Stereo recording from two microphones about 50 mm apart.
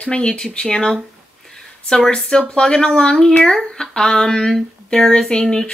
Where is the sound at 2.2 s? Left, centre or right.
Centre.